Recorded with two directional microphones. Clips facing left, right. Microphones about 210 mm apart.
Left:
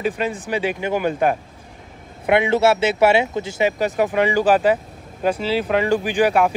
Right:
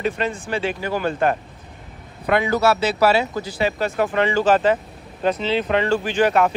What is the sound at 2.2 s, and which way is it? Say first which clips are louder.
Speech: left 2 dB; 20° left (ahead or behind).